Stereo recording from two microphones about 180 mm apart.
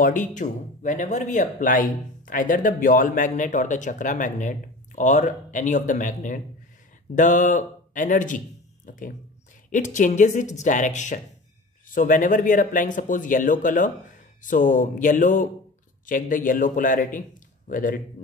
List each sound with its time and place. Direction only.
0.3 s speech: 45° left (ahead or behind)